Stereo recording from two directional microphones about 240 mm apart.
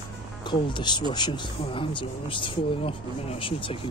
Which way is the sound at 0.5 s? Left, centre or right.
Centre.